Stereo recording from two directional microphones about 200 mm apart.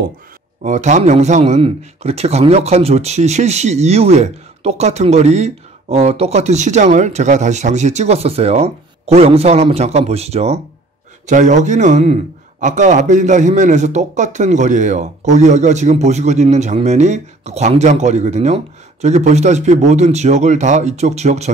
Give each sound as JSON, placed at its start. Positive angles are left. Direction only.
{"t": 0.7, "sound": "a man's voice", "side_deg": -35}